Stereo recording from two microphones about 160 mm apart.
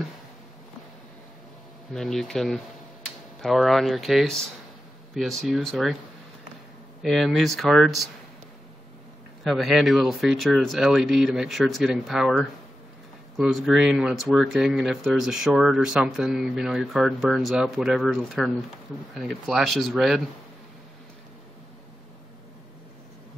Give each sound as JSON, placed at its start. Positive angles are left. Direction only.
{"t": 2.0, "sound": "speech", "side_deg": 0}
{"t": 7.0, "sound": "speech", "side_deg": 0}
{"t": 9.4, "sound": "speech", "side_deg": 0}